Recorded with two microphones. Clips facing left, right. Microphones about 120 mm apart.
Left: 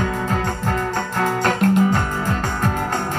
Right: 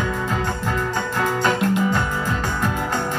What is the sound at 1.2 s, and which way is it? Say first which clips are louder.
Music: left 2 dB; 50° left (ahead or behind).